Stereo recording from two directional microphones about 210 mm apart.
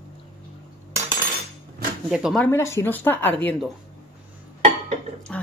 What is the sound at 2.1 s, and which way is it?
Speech, centre (ahead or behind).